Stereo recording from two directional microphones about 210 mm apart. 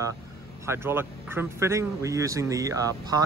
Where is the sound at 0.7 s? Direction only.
10° right (ahead or behind).